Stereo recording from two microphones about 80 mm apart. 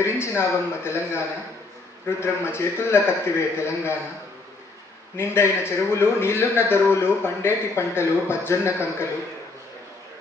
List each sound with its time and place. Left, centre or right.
0.0 s a man's voice: left
5.1 s a man's voice: left